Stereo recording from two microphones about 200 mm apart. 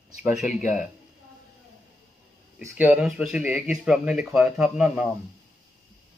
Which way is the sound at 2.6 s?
5° right (ahead or behind).